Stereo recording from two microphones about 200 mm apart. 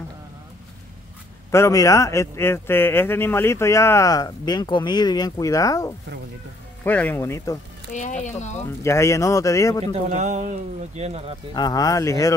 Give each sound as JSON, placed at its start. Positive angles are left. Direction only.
{"t": 1.5, "sound": "a man's voice", "side_deg": 15}
{"t": 7.9, "sound": "speech", "side_deg": 40}
{"t": 8.8, "sound": "a man's voice", "side_deg": 15}
{"t": 9.9, "sound": "speech", "side_deg": -35}
{"t": 11.5, "sound": "a man's voice", "side_deg": 20}